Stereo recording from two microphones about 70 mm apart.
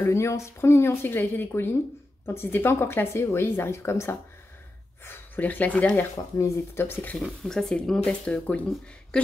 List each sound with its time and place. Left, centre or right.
0.0 s speech: left
6.3 s speech: left
7.2 s speech: centre